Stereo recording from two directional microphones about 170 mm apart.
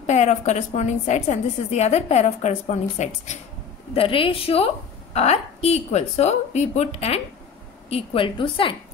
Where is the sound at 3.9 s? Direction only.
30° left (ahead or behind).